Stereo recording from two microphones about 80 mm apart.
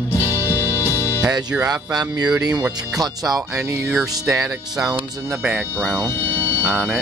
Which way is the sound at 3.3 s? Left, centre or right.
Centre.